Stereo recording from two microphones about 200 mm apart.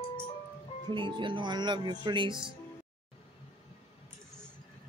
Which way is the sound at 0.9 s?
25° right (ahead or behind).